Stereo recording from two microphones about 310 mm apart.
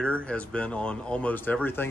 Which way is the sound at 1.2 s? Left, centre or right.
Centre.